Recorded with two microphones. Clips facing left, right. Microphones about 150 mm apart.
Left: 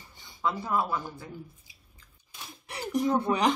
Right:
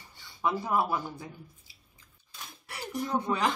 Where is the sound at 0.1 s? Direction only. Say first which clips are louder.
Left 1 dB; 20° left (ahead or behind).